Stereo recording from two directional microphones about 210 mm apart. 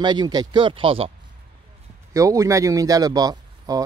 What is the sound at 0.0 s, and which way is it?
Speech, 20° right (ahead or behind).